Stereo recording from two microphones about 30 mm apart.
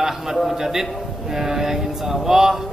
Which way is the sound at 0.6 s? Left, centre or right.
Centre.